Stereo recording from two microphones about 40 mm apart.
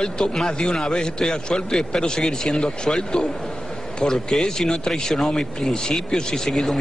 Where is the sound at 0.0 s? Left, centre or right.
Centre.